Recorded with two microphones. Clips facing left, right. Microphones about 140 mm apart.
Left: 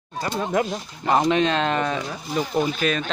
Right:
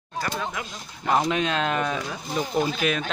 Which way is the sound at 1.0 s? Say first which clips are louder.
Left 4 dB; centre (ahead or behind).